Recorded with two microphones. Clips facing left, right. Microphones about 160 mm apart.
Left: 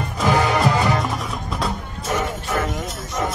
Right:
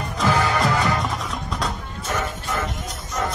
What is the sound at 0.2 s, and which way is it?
Music, 15° left (ahead or behind).